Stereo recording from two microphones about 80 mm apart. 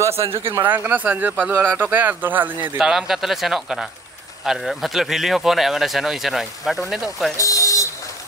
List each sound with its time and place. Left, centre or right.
0.4 s speech: right
2.8 s speech: centre
7.3 s a sound: left